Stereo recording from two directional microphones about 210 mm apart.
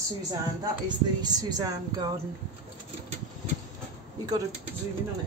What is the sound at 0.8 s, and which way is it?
Speech, 20° right (ahead or behind).